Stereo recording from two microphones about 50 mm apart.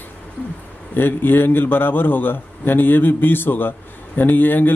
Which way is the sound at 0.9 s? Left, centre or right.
Left.